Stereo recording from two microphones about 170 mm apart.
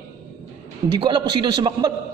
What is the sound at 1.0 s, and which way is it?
Speech, 25° right (ahead or behind).